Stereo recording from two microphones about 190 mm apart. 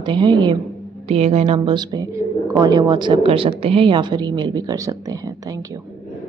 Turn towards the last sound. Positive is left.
turn(degrees=-20)  # may be behind; listen again after turning